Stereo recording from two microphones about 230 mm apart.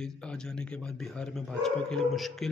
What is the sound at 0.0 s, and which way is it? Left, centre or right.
Speech, centre.